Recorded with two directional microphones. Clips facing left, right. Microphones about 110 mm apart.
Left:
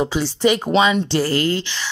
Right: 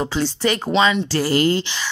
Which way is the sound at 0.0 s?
5° left (ahead or behind).